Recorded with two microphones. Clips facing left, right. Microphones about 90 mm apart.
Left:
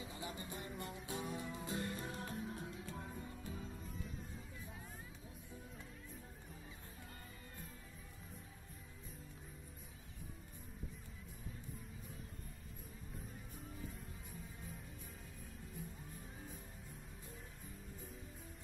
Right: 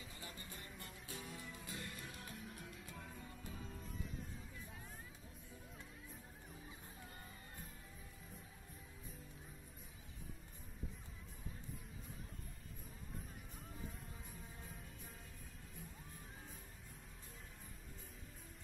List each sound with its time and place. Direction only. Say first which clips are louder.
0.0 s music: left 7 dB; 20° left (ahead or behind)
0.7 s music: left 7 dB; 30° left (ahead or behind)
3.5 s music: left 2 dB; 5° left (ahead or behind)